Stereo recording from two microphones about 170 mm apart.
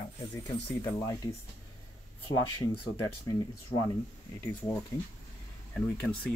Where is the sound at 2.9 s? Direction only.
20° left (ahead or behind).